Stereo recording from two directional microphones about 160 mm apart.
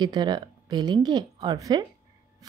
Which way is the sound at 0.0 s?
25° right (ahead or behind).